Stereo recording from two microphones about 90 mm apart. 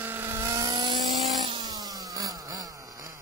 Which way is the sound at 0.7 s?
60° right (ahead or behind).